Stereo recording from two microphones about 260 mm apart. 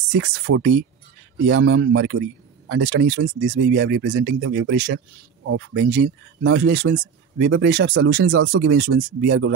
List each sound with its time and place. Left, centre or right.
0.1 s speech: right